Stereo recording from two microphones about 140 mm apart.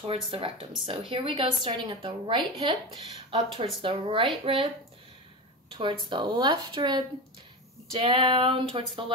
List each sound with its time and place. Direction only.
0.0 s a woman's voice: 40° right (ahead or behind)
5.7 s a woman's voice: 35° right (ahead or behind)
7.9 s a woman's voice: 45° right (ahead or behind)